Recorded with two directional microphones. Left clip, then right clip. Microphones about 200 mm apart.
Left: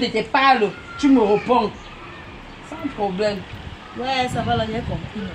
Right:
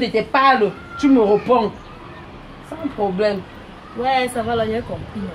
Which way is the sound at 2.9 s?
5° right (ahead or behind).